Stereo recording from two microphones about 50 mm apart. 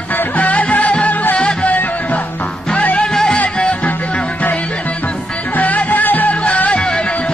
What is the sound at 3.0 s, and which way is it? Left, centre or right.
Music, centre.